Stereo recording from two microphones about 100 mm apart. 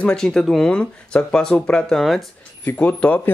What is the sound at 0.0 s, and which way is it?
Speech, 5° left (ahead or behind).